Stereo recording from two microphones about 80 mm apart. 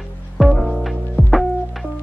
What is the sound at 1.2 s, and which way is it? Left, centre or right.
Music, right.